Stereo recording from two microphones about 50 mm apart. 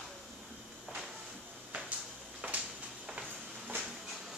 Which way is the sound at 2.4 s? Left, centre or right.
Right.